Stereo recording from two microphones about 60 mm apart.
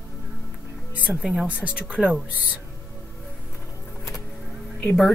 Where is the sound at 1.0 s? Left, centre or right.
Right.